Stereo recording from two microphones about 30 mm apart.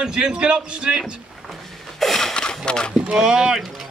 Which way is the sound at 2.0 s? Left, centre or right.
Centre.